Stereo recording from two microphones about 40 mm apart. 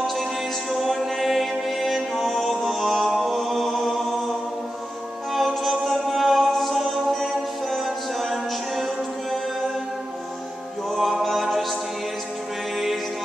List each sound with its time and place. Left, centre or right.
0.0 s music: centre
5.3 s music: centre
10.9 s music: centre
12.7 s music: centre